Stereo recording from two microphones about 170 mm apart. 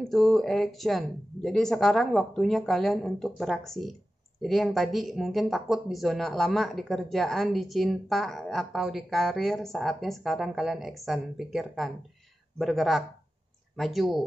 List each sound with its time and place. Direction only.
0.1 s speech: centre (ahead or behind)